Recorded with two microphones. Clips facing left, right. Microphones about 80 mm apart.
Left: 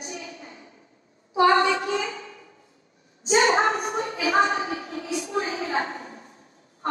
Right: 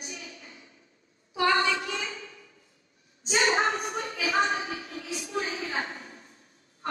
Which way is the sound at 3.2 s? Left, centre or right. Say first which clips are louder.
Left 5 dB; left.